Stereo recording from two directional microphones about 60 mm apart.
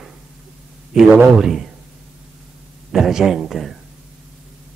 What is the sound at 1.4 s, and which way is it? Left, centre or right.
Speech, centre.